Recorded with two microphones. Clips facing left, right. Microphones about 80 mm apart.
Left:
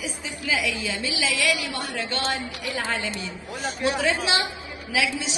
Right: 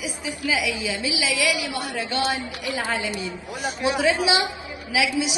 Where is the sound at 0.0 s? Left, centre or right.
Centre.